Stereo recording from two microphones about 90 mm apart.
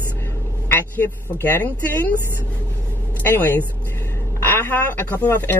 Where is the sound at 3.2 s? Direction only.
20° left (ahead or behind).